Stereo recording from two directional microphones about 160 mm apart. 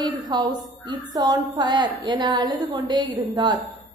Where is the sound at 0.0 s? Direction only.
25° right (ahead or behind).